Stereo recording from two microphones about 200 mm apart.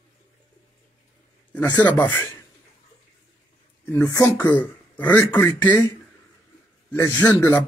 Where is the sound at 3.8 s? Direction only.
10° left (ahead or behind).